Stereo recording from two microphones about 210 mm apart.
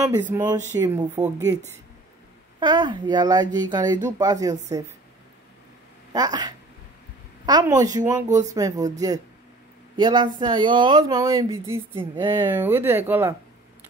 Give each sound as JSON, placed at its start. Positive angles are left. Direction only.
{"t": 0.1, "sound": "speech", "side_deg": -15}
{"t": 2.6, "sound": "speech", "side_deg": -20}
{"t": 6.1, "sound": "speech", "side_deg": -20}
{"t": 8.3, "sound": "speech", "side_deg": -35}
{"t": 8.5, "sound": "speech", "side_deg": -15}
{"t": 9.9, "sound": "speech", "side_deg": -20}